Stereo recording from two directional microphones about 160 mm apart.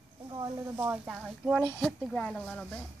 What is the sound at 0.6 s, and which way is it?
Speech, 10° right (ahead or behind).